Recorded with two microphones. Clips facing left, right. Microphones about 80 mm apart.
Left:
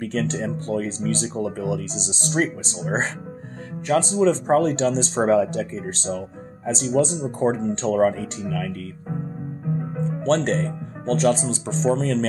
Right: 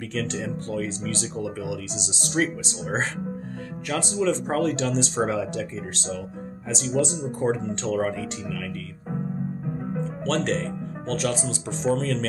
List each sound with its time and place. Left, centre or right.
0.0 s speech: left
9.7 s music: centre
10.2 s speech: left